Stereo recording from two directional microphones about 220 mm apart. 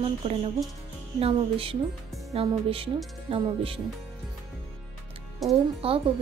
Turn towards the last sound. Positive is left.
turn(degrees=-25)  # may be behind; listen again after turning